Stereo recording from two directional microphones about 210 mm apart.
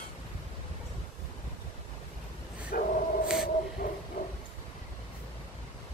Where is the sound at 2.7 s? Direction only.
45° left (ahead or behind).